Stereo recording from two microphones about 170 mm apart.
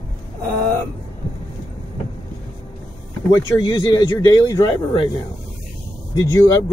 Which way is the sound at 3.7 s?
25° left (ahead or behind).